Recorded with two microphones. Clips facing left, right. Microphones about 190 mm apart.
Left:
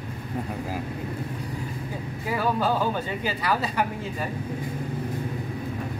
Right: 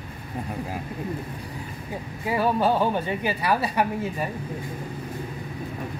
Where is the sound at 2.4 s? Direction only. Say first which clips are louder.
Right 3 dB; 20° right (ahead or behind).